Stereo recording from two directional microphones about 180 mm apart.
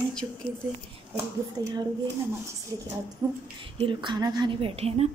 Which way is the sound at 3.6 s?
30° right (ahead or behind).